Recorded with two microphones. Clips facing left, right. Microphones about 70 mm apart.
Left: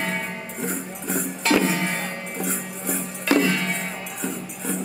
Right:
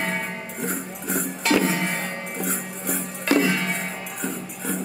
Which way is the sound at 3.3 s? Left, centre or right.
Centre.